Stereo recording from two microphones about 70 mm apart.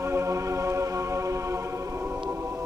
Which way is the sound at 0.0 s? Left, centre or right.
Right.